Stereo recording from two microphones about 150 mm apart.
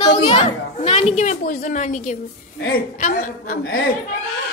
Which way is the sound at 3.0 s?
65° left (ahead or behind).